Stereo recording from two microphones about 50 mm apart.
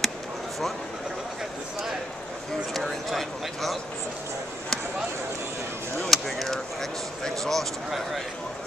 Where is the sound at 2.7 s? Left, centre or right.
Centre.